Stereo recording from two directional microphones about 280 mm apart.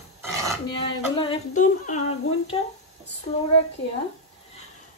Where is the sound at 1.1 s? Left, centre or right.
Centre.